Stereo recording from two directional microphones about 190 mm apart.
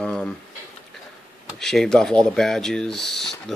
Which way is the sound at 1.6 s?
Centre (ahead or behind).